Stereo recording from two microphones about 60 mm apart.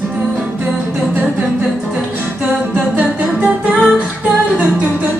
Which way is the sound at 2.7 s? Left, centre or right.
Right.